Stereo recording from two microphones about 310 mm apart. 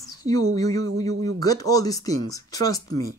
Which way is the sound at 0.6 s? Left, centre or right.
Centre.